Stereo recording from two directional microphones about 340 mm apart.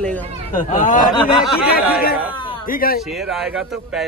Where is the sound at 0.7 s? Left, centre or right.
Left.